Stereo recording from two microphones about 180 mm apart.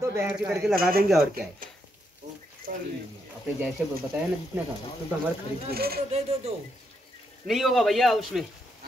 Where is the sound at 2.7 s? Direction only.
50° right (ahead or behind).